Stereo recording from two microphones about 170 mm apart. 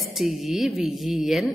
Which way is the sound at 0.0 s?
Centre (ahead or behind).